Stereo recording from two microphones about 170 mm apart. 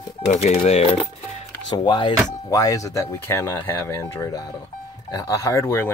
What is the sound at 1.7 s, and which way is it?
Speech, 25° left (ahead or behind).